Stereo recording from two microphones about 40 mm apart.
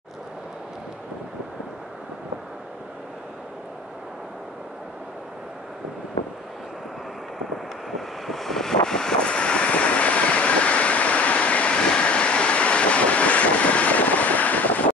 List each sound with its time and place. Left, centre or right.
7.9 s vehicle: centre
9.2 s vehicle: left